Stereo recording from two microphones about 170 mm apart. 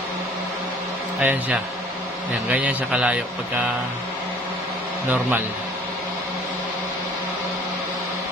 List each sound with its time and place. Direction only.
1.2 s a man's voice: 10° right (ahead or behind)